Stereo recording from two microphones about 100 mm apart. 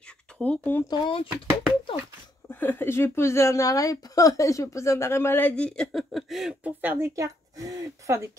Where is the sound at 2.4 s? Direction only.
20° left (ahead or behind).